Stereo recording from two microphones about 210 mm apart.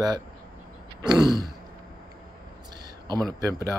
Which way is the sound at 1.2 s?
20° right (ahead or behind).